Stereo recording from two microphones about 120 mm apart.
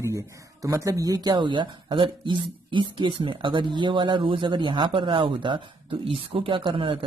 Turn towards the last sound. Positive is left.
turn(degrees=-40)  # may be behind; listen again after turning